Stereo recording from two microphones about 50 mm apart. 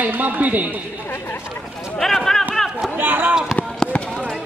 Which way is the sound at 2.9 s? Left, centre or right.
Right.